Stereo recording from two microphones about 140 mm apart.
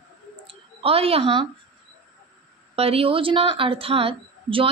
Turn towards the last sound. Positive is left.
turn(degrees=-40)  # may be behind; listen again after turning